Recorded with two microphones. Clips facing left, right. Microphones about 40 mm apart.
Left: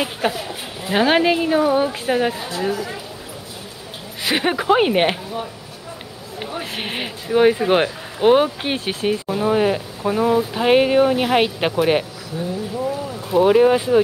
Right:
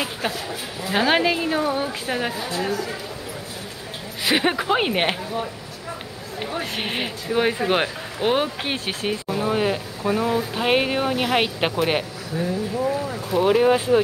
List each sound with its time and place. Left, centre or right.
0.0 s a woman's voice: centre
2.3 s speech: left
2.6 s speech: centre
4.2 s speech: centre
12.8 s boat: centre
13.3 s speech: centre